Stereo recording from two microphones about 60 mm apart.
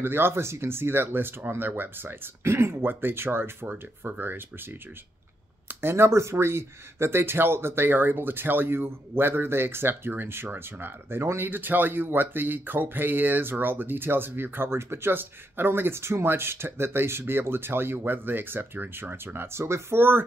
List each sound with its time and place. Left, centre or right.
0.0 s speech: right